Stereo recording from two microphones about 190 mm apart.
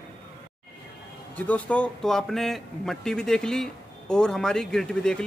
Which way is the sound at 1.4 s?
10° left (ahead or behind).